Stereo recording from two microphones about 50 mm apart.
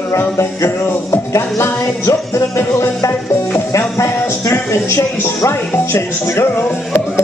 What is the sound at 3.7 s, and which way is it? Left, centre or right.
Speech, left.